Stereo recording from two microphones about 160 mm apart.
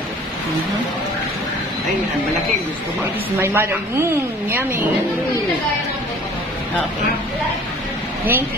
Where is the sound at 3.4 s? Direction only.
15° right (ahead or behind).